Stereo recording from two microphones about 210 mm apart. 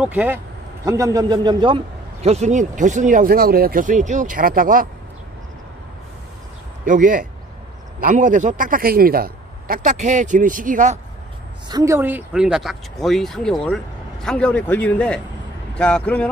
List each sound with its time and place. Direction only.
0.0 s a man's voice: 5° right (ahead or behind)
2.2 s a man's voice: 30° right (ahead or behind)
6.9 s a man's voice: 40° right (ahead or behind)
11.7 s speech: 15° right (ahead or behind); by 16.3 s 5° left (ahead or behind)